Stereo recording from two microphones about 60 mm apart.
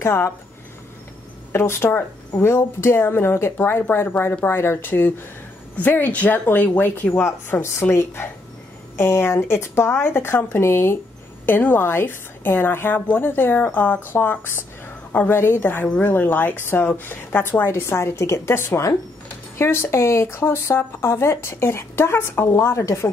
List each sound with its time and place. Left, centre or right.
0.0 s speech: left
1.5 s a woman's voice: left
7.6 s speech: left
11.4 s a woman's voice: left